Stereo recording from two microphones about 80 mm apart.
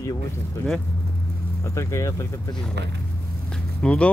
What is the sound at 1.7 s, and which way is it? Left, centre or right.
Speech, left.